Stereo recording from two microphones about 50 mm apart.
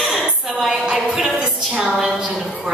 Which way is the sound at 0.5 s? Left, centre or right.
Centre.